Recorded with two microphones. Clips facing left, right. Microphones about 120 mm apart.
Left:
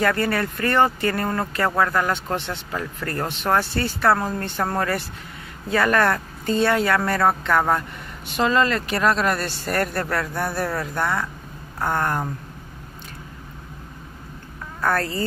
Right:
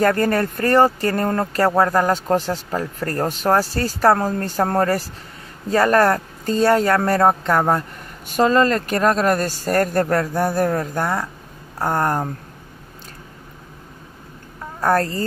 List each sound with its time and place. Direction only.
0.0 s speech: 40° right (ahead or behind)
14.8 s speech: 40° right (ahead or behind)